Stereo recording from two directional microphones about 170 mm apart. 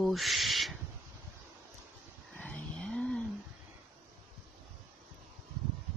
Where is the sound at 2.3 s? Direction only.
5° left (ahead or behind).